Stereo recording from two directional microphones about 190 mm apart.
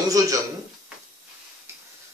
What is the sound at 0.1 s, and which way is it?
Speech, 20° right (ahead or behind).